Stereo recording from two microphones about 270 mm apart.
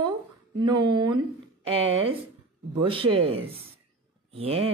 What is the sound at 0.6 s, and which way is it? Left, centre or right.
Speech, centre.